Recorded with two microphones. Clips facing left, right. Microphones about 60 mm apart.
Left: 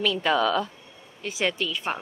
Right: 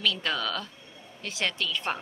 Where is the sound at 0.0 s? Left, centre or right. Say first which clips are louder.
Left 6 dB; centre.